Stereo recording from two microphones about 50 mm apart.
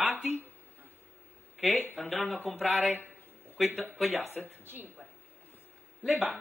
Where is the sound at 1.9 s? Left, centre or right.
Centre.